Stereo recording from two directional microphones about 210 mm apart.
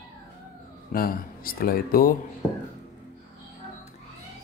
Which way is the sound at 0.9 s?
45° left (ahead or behind).